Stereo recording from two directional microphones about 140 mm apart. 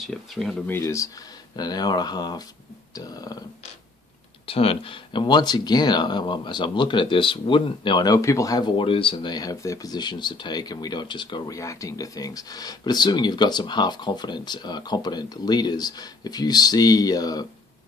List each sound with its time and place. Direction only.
0.0 s speech: centre (ahead or behind)
0.7 s speech: 20° left (ahead or behind)
4.5 s speech: 45° left (ahead or behind); by 17.5 s 25° left (ahead or behind)